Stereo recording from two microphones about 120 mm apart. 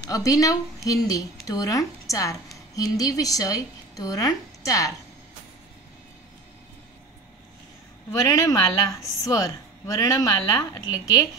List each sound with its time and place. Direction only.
0.1 s a woman's voice: 30° left (ahead or behind)
8.1 s a woman's voice: 25° left (ahead or behind)